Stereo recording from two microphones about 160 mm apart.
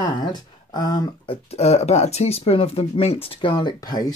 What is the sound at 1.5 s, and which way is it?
Speech, 40° left (ahead or behind).